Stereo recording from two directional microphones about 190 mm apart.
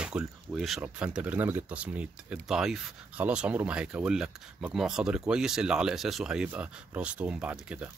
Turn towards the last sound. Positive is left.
turn(degrees=-5)  # may be behind; listen again after turning